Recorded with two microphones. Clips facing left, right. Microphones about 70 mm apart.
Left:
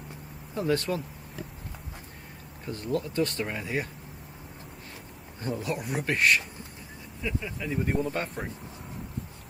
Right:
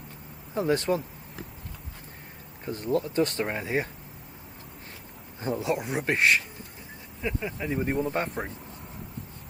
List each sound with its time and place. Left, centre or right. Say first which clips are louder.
0.6 s speech: right 2 dB; right
2.6 s speech: right 3 dB; right
5.6 s speech: right 4 dB; right